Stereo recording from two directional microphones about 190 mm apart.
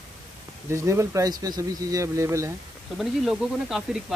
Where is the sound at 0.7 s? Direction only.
15° right (ahead or behind).